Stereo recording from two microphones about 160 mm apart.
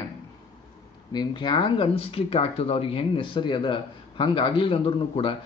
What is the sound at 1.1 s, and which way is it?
Speech, 30° left (ahead or behind).